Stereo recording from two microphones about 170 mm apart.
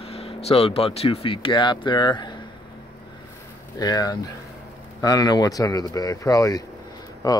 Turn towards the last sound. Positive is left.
turn(degrees=20)  # may be behind; listen again after turning